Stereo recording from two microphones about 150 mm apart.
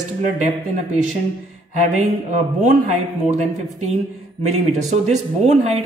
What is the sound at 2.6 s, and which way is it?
Speech, 65° right (ahead or behind).